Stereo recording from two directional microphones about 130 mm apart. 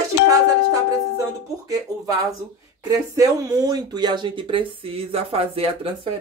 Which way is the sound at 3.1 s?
25° right (ahead or behind).